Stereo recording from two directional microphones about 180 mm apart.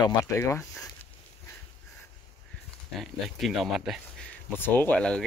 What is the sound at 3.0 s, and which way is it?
Speech, centre (ahead or behind).